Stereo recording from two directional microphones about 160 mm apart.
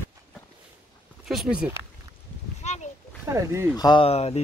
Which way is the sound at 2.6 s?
45° left (ahead or behind).